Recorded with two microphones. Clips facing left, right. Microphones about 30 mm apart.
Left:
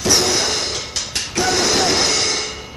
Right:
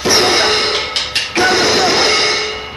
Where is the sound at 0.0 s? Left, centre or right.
Right.